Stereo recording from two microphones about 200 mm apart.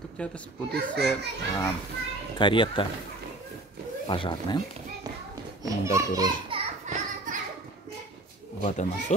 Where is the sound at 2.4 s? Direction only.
25° left (ahead or behind).